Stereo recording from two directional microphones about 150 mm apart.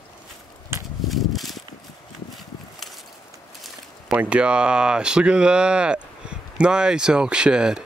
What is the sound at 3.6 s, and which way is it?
Speech, 5° right (ahead or behind).